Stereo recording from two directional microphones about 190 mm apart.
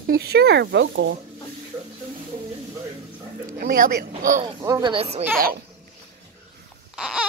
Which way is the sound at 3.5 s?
50° right (ahead or behind).